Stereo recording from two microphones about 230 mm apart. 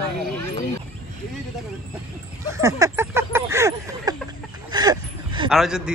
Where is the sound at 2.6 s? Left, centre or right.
Centre.